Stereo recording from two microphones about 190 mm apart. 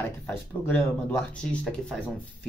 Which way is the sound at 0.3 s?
10° left (ahead or behind).